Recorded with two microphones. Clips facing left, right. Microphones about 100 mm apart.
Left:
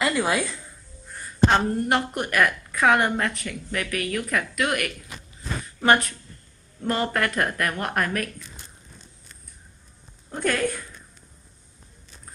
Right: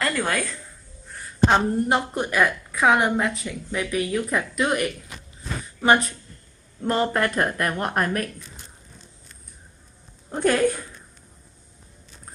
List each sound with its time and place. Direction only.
0.0 s a sound: 5° left (ahead or behind)
1.5 s a woman's voice: 15° right (ahead or behind)
10.3 s a woman's voice: 20° right (ahead or behind)